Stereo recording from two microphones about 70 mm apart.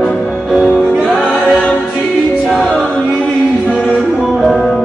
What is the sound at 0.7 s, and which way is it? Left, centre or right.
Music, centre.